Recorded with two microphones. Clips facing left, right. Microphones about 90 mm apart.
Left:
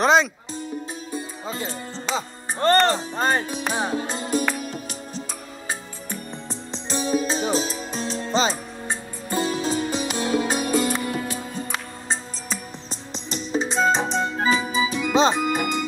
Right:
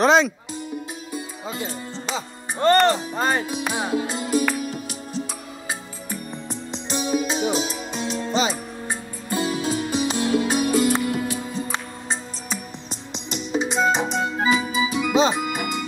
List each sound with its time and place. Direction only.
0.0 s speech: centre (ahead or behind)
1.1 s speech: 35° left (ahead or behind)
4.6 s music: 35° left (ahead or behind)
13.1 s music: 35° left (ahead or behind)